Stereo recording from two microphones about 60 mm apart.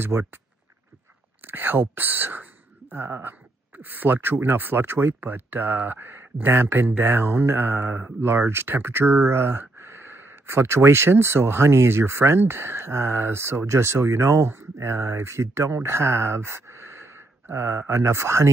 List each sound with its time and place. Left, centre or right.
0.0 s speech: right
1.4 s speech: right